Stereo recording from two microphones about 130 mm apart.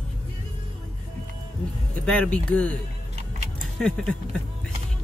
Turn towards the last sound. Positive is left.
turn(degrees=5)  # may be behind; listen again after turning